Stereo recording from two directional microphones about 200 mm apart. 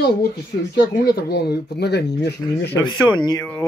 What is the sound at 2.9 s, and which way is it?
Speech, 20° left (ahead or behind).